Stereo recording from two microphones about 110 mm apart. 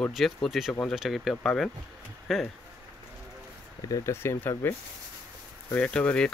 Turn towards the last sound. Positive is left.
turn(degrees=10)  # may be behind; listen again after turning